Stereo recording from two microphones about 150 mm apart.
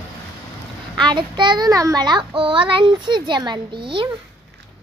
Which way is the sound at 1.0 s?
30° right (ahead or behind).